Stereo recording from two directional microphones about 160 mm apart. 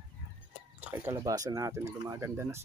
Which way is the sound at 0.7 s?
10° right (ahead or behind).